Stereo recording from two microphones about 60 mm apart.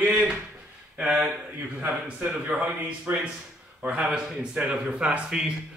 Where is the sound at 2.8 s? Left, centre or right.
Right.